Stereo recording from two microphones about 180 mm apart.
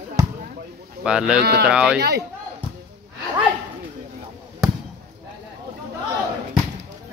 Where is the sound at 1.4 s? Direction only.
65° right (ahead or behind).